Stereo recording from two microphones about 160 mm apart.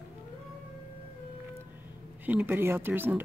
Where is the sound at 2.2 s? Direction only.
10° right (ahead or behind).